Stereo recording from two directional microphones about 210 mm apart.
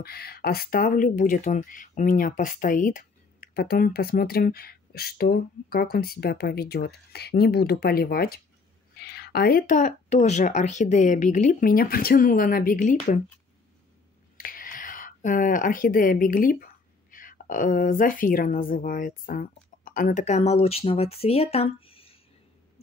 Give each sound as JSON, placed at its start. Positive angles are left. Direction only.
{"t": 0.0, "sound": "speech", "side_deg": 45}
{"t": 14.3, "sound": "a sound", "side_deg": 40}
{"t": 17.1, "sound": "speech", "side_deg": 40}